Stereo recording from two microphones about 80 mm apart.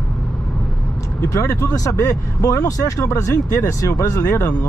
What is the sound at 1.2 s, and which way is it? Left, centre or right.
Speech, left.